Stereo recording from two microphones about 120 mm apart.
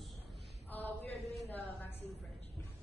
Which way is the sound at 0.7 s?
15° left (ahead or behind).